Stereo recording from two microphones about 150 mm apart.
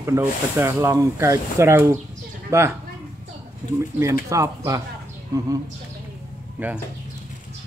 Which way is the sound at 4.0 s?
20° right (ahead or behind).